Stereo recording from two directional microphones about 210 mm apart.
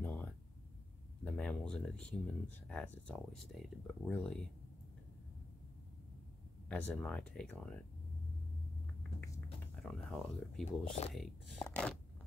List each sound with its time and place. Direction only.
0.0 s a sound: 10° left (ahead or behind)
1.2 s speech: 5° left (ahead or behind)
6.7 s speech: 5° left (ahead or behind)
9.8 s speech: centre (ahead or behind)
10.6 s speech: 30° left (ahead or behind)
11.1 s speech: 5° left (ahead or behind)